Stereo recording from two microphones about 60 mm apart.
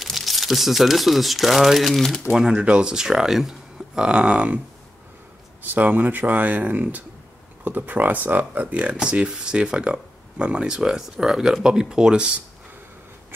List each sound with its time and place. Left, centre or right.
0.0 s speech: centre
2.3 s speech: centre
5.7 s speech: right